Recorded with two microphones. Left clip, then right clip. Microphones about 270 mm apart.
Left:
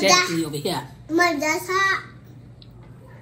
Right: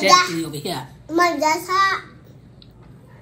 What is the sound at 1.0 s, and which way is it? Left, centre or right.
Speech, centre.